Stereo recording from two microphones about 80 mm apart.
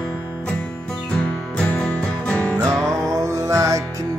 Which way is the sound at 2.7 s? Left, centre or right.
Centre.